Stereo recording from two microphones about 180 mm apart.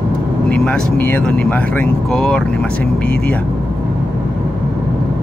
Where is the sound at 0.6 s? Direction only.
10° left (ahead or behind).